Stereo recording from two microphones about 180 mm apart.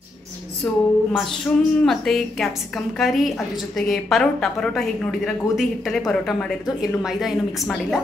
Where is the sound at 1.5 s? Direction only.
5° left (ahead or behind).